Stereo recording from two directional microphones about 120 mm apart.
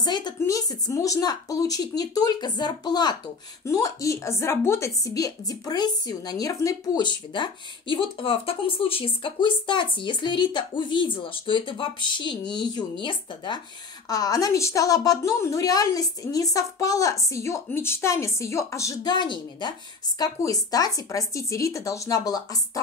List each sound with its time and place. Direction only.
0.0 s a woman's voice: 35° left (ahead or behind)
19.1 s a woman's voice: 40° left (ahead or behind)